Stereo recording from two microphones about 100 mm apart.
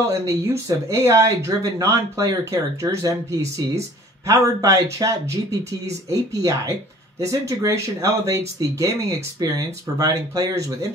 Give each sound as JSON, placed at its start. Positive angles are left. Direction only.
{"t": 0.3, "sound": "speech", "side_deg": -30}
{"t": 9.4, "sound": "speech", "side_deg": -40}